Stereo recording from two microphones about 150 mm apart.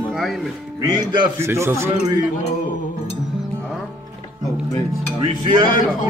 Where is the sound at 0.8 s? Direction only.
30° right (ahead or behind).